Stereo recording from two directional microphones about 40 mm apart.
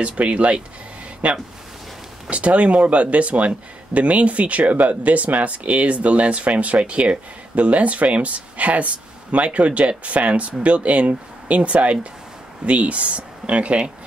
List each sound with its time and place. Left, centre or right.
0.0 s speech: right